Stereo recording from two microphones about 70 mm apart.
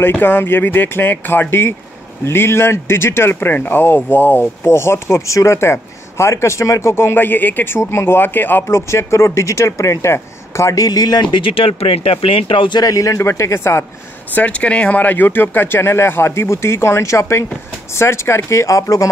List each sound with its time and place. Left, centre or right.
0.0 s speech: left
4.6 s speech: left
12.7 s speech: left
14.3 s speech: centre; by 19.0 s left